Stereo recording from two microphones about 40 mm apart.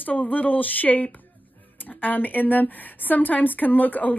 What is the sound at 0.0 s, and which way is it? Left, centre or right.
Speech, left.